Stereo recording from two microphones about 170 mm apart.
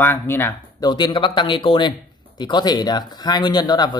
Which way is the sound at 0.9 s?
30° left (ahead or behind).